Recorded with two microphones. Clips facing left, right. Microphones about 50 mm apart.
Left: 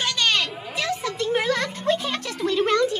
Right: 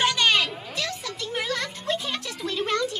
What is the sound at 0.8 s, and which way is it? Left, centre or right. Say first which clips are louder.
Music: left 6 dB; centre.